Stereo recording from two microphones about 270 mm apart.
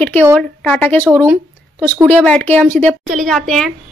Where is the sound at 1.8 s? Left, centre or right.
Centre.